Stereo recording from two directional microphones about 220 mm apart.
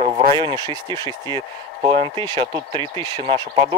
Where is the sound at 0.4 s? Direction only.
20° right (ahead or behind).